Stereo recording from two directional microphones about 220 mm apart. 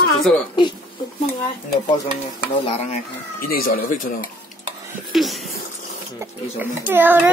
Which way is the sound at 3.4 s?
40° left (ahead or behind).